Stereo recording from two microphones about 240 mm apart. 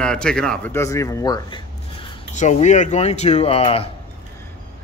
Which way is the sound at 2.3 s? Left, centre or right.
Left.